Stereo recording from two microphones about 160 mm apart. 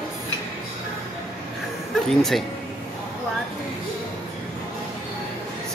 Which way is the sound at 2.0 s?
Centre (ahead or behind).